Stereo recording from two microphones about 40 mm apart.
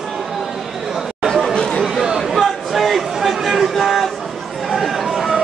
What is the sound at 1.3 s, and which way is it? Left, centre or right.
Chatter, centre.